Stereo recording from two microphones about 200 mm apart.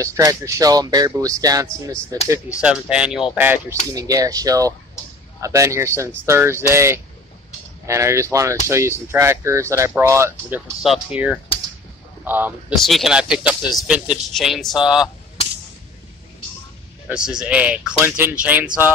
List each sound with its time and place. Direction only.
0.0 s speech: 15° right (ahead or behind)
2.7 s speech: 5° right (ahead or behind)
12.7 s speech: centre (ahead or behind)
17.1 s speech: 5° right (ahead or behind)